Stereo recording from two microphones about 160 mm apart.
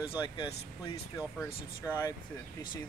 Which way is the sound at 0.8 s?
15° left (ahead or behind).